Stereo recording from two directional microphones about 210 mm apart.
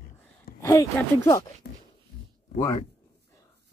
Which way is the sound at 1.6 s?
55° left (ahead or behind).